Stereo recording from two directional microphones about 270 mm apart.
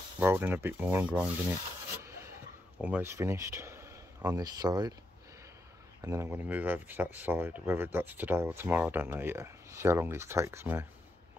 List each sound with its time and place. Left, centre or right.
0.2 s speech: centre
2.0 s rub: centre
2.8 s speech: centre
5.9 s speech: centre